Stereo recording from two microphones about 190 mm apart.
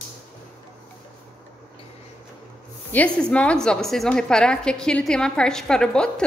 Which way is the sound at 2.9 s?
5° left (ahead or behind).